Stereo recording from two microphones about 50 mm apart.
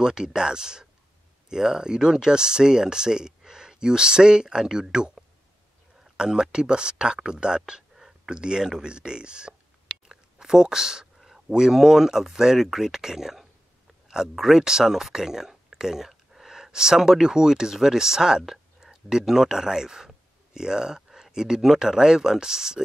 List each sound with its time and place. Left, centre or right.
0.0 s speech: centre
14.0 s a sound: centre
14.3 s speech: centre
18.4 s whispering: centre
18.9 s speech: centre